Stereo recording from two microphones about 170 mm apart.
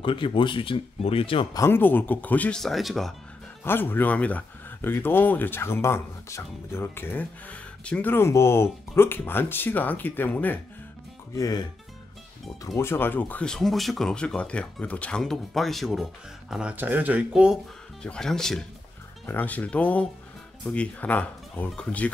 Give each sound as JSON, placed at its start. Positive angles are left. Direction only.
{"t": 0.0, "sound": "speech", "side_deg": 30}
{"t": 1.6, "sound": "speech", "side_deg": 10}
{"t": 3.6, "sound": "speech", "side_deg": 10}
{"t": 11.3, "sound": "speech", "side_deg": 20}
{"t": 12.6, "sound": "speech", "side_deg": 15}